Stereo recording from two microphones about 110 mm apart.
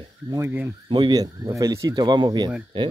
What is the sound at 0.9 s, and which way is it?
Speech, 40° right (ahead or behind).